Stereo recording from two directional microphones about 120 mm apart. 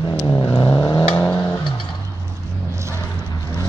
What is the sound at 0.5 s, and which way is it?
Vehicle, 40° left (ahead or behind).